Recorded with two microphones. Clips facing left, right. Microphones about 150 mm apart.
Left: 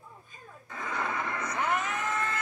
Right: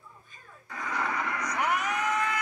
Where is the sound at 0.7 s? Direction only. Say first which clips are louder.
Right 1 dB; 20° left (ahead or behind).